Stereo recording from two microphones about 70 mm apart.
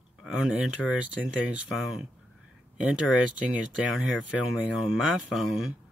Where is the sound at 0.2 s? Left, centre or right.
Centre.